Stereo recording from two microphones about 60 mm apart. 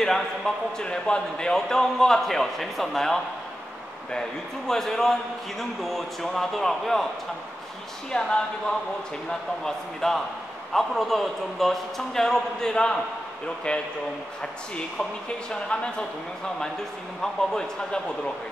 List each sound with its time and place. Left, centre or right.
0.7 s a man's voice: centre
4.6 s a man's voice: centre
8.1 s a man's voice: centre